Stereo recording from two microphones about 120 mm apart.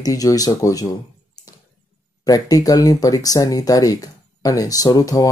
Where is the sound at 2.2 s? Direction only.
30° left (ahead or behind).